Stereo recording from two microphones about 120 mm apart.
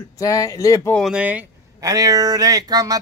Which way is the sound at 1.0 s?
5° right (ahead or behind).